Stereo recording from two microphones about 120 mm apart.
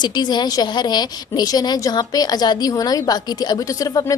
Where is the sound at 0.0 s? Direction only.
40° left (ahead or behind).